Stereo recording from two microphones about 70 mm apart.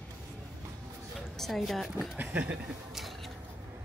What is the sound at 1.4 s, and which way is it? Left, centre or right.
Speech, centre.